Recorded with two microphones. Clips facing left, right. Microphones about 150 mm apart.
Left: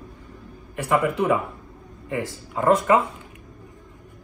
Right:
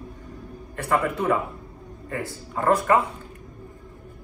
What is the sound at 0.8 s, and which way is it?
A man's voice, 15° left (ahead or behind).